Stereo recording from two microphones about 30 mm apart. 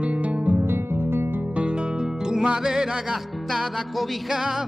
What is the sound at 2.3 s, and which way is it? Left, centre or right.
Music, right.